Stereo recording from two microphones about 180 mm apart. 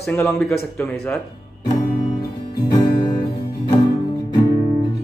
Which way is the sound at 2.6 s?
25° left (ahead or behind).